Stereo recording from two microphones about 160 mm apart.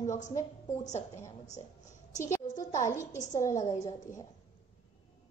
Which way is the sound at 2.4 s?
55° left (ahead or behind).